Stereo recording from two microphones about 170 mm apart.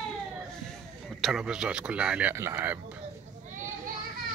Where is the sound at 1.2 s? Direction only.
5° right (ahead or behind).